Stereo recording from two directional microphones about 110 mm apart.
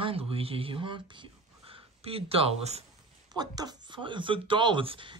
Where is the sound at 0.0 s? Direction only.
60° right (ahead or behind).